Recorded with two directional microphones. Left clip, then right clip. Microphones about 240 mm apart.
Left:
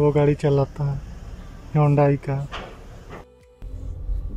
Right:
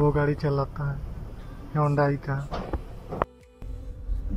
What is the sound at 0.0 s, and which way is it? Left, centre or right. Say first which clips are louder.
Speech: left 5 dB; centre.